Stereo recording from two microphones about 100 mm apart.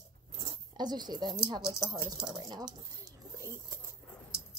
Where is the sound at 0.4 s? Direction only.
50° right (ahead or behind).